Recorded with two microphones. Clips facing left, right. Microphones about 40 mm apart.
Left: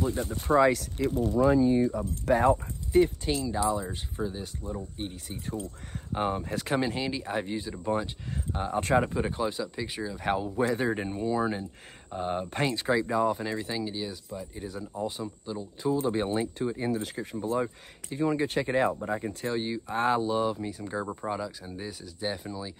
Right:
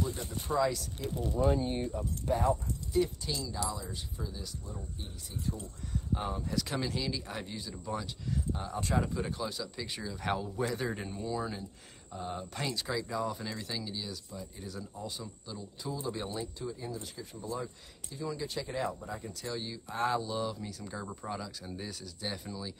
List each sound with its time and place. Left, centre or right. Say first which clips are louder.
0.0 s speech: left 6 dB; left
2.2 s speech: left 7 dB; left
9.8 s speech: left 4 dB; centre; by 11.6 s left
12.1 s speech: left 8 dB; left